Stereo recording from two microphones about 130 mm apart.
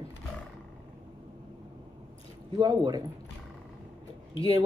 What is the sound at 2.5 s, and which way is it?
Speech, 30° right (ahead or behind).